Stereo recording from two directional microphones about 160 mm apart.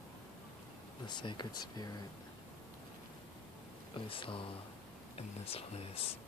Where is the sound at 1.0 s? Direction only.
30° left (ahead or behind).